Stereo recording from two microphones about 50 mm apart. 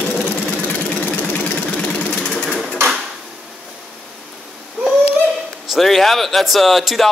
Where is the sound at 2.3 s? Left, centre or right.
Centre.